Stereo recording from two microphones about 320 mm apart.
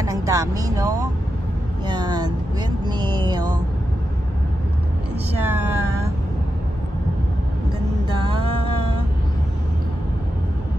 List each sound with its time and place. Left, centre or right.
0.0 s speech: centre
1.9 s vehicle: centre
2.8 s speech: centre
5.4 s speech: centre
8.1 s music: centre